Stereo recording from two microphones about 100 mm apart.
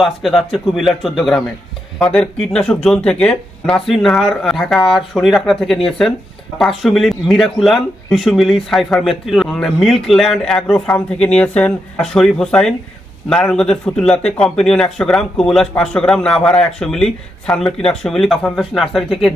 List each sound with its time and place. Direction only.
0.0 s a man's voice: centre (ahead or behind)